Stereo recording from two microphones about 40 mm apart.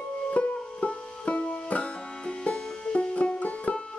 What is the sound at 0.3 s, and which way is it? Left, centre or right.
Music, left.